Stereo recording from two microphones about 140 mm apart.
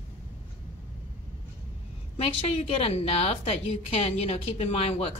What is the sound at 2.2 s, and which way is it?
A woman's voice, 40° left (ahead or behind).